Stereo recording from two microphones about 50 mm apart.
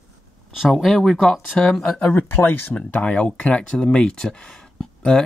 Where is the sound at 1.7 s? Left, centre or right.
Centre.